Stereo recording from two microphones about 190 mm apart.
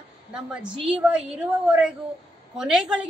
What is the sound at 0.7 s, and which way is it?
Speech, 25° right (ahead or behind).